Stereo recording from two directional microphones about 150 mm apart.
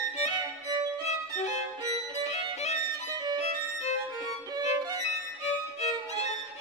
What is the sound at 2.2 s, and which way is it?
Violin, 45° left (ahead or behind).